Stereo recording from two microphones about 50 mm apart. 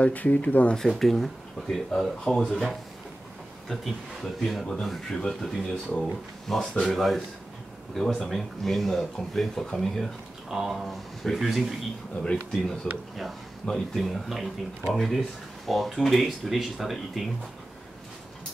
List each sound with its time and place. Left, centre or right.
0.0 s speech: left
0.7 s speech: centre
10.5 s speech: centre
12.2 s speech: centre
13.9 s speech: centre